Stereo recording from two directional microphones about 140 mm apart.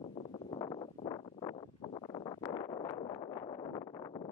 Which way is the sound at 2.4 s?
20° left (ahead or behind).